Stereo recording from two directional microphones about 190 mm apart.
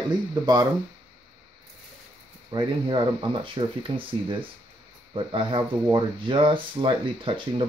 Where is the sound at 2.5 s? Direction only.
25° right (ahead or behind).